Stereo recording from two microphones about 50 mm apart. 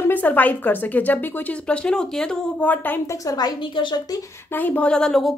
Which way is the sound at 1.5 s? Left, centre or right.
Left.